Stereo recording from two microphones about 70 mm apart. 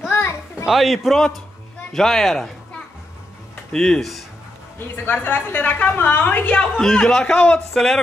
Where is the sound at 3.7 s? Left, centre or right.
Centre.